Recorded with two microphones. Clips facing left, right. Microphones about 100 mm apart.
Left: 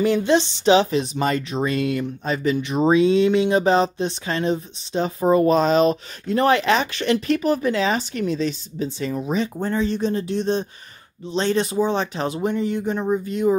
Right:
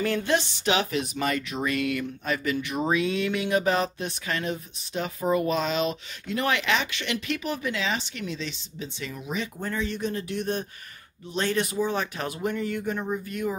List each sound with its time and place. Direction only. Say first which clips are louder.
0.0 s speech: left 7 dB; 20° left (ahead or behind)